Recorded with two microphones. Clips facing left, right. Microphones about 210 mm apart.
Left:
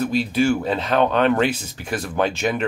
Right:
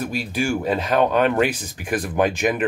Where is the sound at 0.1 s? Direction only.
10° right (ahead or behind).